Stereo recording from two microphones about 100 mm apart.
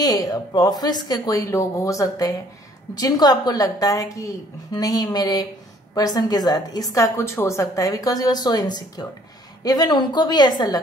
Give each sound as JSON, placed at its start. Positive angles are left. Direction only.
{"t": 0.0, "sound": "a woman's voice", "side_deg": 40}